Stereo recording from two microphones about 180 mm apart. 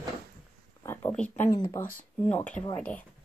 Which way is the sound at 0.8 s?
10° left (ahead or behind).